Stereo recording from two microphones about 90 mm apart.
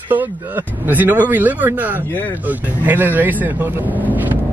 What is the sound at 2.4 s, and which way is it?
Speech, 20° right (ahead or behind).